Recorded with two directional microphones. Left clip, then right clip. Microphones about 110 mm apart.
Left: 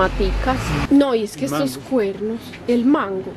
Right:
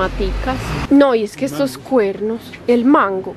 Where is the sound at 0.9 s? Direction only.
15° right (ahead or behind).